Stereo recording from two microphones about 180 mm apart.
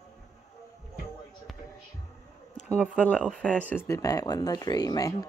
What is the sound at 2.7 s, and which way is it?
Speech, 5° left (ahead or behind).